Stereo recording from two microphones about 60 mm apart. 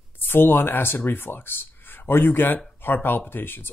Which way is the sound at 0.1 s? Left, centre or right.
Left.